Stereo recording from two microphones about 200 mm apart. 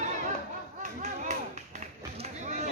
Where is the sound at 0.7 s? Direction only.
35° right (ahead or behind).